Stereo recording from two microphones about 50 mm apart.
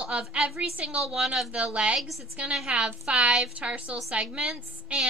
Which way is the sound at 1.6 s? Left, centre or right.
Right.